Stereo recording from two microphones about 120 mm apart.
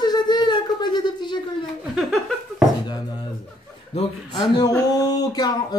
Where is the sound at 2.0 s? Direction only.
Centre (ahead or behind).